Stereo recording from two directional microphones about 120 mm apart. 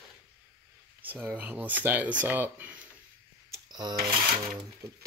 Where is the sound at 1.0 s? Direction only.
15° right (ahead or behind).